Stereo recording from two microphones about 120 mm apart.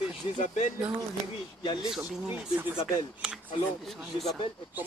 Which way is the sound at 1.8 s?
5° right (ahead or behind).